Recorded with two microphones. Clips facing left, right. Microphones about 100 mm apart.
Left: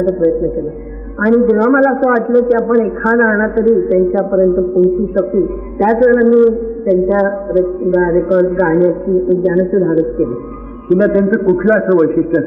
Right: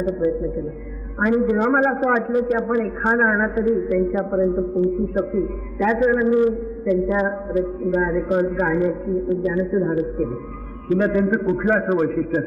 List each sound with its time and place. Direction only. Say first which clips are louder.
1.2 s a man's voice: left 8 dB; 35° left (ahead or behind)